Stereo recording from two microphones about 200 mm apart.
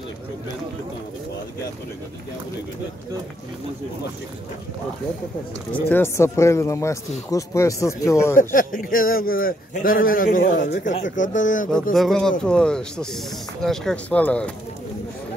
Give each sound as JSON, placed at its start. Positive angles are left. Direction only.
{"t": 5.7, "sound": "speech", "side_deg": 10}
{"t": 8.4, "sound": "a man's voice", "side_deg": 40}
{"t": 11.9, "sound": "speech", "side_deg": 0}